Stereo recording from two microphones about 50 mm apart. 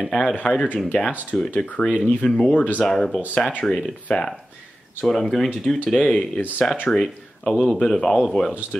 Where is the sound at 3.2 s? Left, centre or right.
Left.